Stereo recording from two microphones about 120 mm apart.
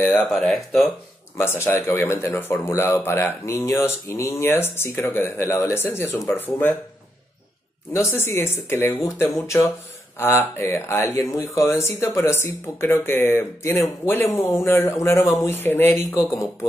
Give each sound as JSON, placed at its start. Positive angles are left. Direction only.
{"t": 0.3, "sound": "speech", "side_deg": 0}
{"t": 1.4, "sound": "speech", "side_deg": 20}
{"t": 7.9, "sound": "speech", "side_deg": 20}